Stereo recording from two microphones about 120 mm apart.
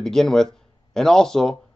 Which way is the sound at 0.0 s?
5° left (ahead or behind).